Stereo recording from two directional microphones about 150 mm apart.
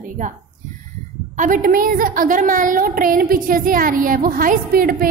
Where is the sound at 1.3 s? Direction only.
60° right (ahead or behind).